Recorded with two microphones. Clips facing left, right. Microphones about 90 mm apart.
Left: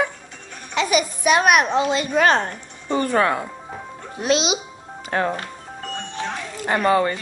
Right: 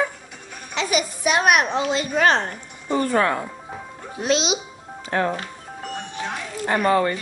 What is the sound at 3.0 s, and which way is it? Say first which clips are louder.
Speech: left 1 dB; 20° left (ahead or behind).